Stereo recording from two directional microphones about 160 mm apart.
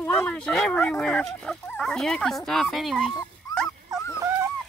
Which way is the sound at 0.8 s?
5° left (ahead or behind).